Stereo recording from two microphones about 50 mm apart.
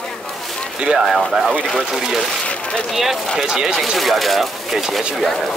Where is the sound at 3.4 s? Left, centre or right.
Centre.